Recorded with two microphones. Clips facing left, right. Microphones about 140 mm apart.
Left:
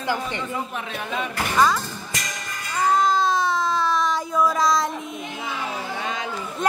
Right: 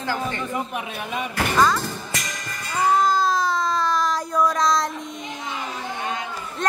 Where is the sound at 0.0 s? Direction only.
15° left (ahead or behind).